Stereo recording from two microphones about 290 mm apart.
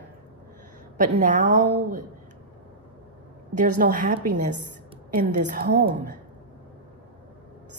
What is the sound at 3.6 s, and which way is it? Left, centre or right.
A woman's voice, right.